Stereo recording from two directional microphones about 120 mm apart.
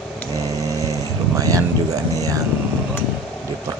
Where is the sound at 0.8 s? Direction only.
30° right (ahead or behind).